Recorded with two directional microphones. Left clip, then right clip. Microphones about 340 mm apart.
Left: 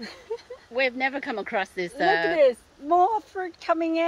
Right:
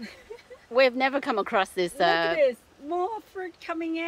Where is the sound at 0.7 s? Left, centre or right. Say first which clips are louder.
Right 3 dB; centre.